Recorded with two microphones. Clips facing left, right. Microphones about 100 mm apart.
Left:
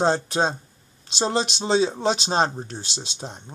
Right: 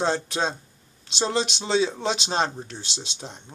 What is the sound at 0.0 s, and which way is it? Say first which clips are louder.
Speech: left 4 dB; 40° left (ahead or behind).